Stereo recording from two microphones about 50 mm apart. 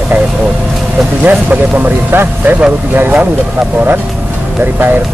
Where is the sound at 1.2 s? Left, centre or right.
Right.